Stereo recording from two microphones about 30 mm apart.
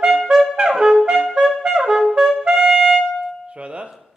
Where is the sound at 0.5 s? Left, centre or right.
Centre.